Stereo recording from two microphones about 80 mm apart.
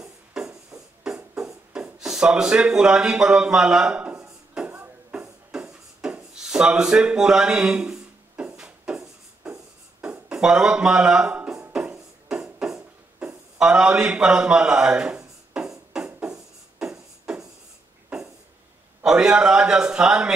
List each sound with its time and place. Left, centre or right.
0.0 s a sound: centre
1.0 s music: centre
1.7 s speech: centre
4.6 s music: right
5.5 s a sound: centre
10.0 s speech: centre
11.7 s music: centre
12.5 s a sound: centre
19.0 s a man's voice: centre